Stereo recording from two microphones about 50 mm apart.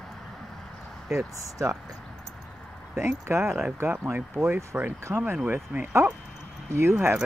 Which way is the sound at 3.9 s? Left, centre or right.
Right.